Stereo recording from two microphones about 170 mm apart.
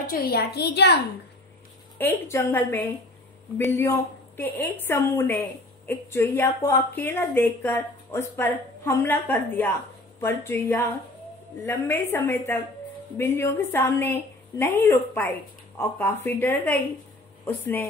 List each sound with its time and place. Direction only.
0.0 s a woman's voice: 60° left (ahead or behind)
2.0 s a woman's voice: 10° left (ahead or behind)